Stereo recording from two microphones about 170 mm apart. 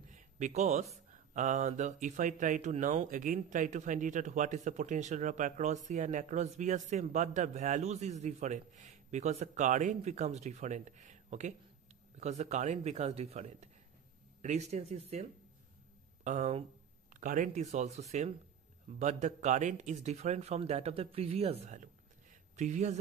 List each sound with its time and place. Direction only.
0.1 s a man's voice: 45° right (ahead or behind)
16.3 s a man's voice: 40° right (ahead or behind)
17.1 s a man's voice: 50° right (ahead or behind)
22.3 s a sound: 45° right (ahead or behind)